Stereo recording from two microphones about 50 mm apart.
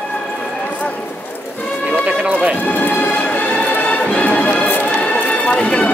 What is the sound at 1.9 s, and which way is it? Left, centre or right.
Run, right.